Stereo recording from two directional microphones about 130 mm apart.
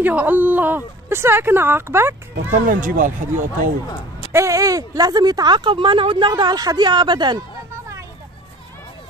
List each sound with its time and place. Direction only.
0.0 s a woman's voice: 10° right (ahead or behind)
2.5 s speech: 90° right
4.3 s speech: 20° right (ahead or behind)